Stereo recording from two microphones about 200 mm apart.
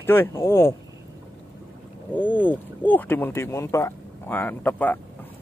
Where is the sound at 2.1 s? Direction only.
10° left (ahead or behind).